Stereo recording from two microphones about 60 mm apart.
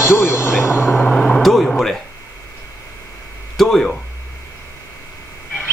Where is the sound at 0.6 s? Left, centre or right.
Left.